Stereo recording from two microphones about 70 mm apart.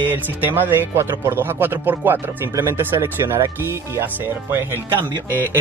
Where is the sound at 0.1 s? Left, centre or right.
Right.